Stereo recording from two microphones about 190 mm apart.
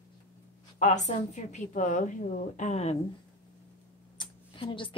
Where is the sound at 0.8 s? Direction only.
40° left (ahead or behind).